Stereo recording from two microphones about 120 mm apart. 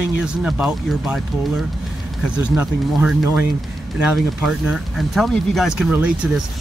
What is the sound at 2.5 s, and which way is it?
Speech, 15° right (ahead or behind).